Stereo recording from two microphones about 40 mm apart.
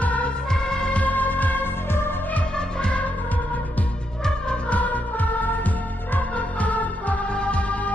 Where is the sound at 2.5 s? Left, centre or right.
Left.